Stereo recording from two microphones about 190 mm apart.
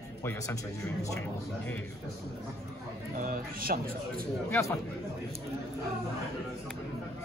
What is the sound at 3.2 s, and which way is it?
A man's voice, 50° right (ahead or behind).